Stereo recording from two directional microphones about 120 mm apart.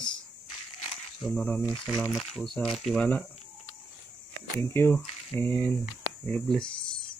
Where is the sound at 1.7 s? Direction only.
35° left (ahead or behind).